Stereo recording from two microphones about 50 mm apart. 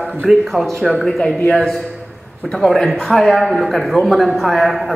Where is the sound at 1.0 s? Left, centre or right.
Centre.